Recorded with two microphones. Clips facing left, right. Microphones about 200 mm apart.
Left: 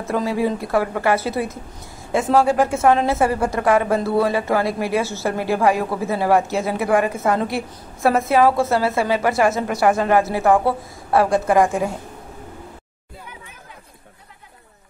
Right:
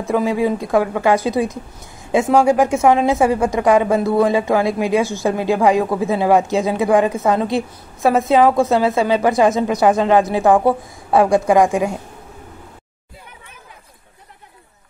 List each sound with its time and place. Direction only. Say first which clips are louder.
0.1 s a woman's voice: right 3 dB; 15° right (ahead or behind)